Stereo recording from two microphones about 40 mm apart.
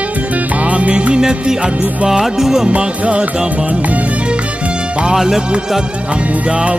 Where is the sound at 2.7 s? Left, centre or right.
Right.